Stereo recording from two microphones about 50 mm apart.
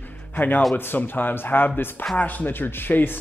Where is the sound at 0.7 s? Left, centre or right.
Left.